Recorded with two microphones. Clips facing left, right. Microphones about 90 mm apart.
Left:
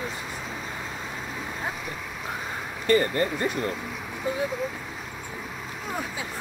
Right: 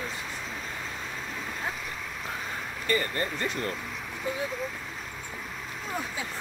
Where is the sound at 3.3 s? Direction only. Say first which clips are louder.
Left 4 dB; 15° left (ahead or behind).